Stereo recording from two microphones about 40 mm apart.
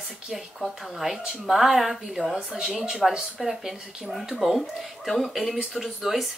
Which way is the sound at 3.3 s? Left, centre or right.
Centre.